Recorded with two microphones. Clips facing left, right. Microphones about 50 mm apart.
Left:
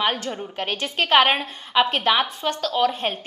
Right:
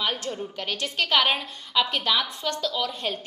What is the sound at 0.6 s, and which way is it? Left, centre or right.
A woman's voice, left.